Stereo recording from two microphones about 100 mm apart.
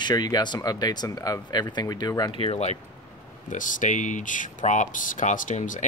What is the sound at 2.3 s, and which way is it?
Speech, 70° left (ahead or behind).